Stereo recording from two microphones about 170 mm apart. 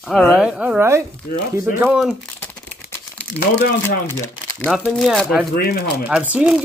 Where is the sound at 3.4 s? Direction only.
65° left (ahead or behind).